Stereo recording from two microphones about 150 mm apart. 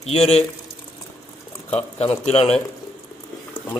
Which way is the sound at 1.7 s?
45° left (ahead or behind).